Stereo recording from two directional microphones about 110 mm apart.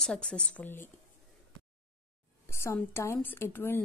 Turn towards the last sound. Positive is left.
turn(degrees=20)  # may be behind; listen again after turning